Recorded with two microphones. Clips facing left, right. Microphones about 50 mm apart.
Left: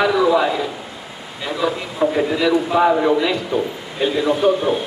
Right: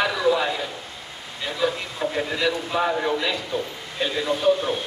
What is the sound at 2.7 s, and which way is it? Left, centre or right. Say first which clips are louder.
Speech: left 8 dB; left.